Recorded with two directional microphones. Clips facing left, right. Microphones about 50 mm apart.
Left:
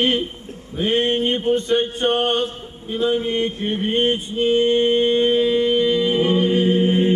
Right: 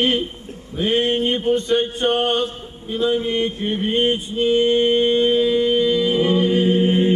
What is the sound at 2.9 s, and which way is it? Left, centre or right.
Music, left.